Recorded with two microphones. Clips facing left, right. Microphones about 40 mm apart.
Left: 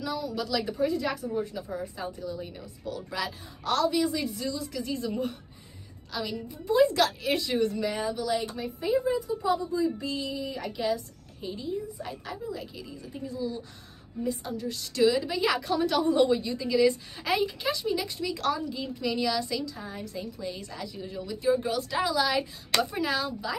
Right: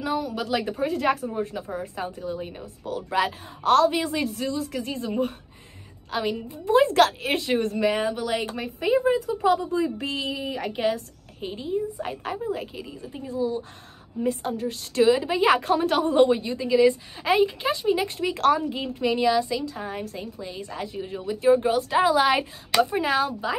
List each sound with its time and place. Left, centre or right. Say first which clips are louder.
0.0 s a woman's voice: right 5 dB; right
19.0 s a woman's voice: right 7 dB; right
19.7 s a woman's voice: right 5 dB; right
20.3 s a woman's voice: right 1 dB; right
20.7 s a woman's voice: right 5 dB; right